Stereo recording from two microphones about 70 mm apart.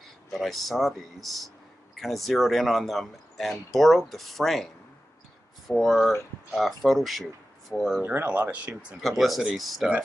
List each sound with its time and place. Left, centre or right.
0.3 s speech: centre
5.7 s speech: centre
8.0 s speech: right
9.0 s speech: centre